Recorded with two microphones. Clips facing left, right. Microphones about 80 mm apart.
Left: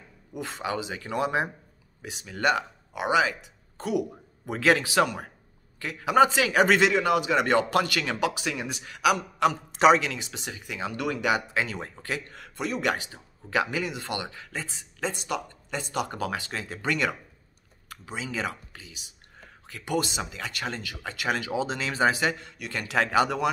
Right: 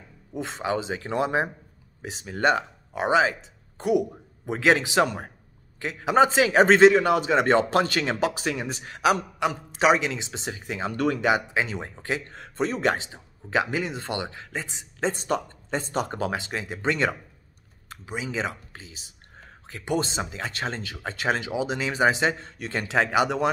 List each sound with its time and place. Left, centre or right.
0.3 s speech: right
9.7 s speech: centre
9.9 s speech: right
21.5 s speech: centre